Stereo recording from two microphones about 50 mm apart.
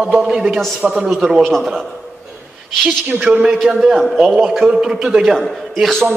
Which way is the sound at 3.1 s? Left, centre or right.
Right.